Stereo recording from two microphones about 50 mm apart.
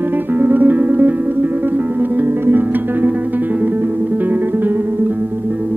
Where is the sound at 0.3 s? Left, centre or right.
Right.